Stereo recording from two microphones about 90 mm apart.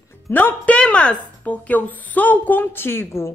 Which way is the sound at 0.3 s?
20° left (ahead or behind).